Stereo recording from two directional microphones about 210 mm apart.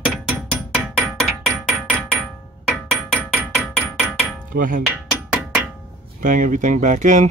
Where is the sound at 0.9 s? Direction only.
Centre (ahead or behind).